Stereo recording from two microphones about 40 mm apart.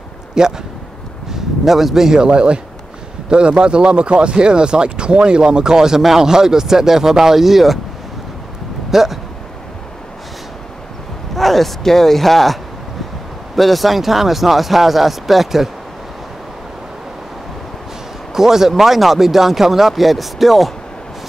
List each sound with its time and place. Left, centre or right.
0.4 s speech: centre
1.3 s speech: centre
8.9 s speech: centre
11.3 s speech: centre
13.6 s speech: centre
18.3 s speech: centre